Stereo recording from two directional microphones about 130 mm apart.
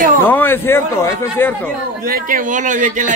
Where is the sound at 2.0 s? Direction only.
90° right.